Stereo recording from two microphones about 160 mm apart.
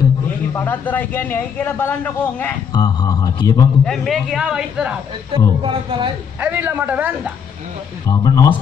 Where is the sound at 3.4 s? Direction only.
25° left (ahead or behind).